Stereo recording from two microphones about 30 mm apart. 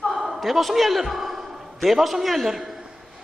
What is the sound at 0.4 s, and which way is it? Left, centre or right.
A man's voice, centre.